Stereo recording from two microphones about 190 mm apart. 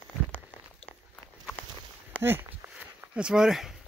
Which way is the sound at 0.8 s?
30° left (ahead or behind).